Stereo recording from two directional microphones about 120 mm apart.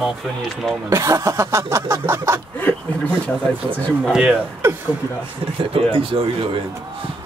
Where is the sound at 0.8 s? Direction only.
25° right (ahead or behind).